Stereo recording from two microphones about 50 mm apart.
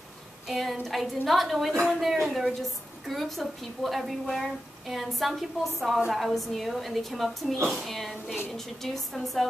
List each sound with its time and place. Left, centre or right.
0.5 s a woman's voice: centre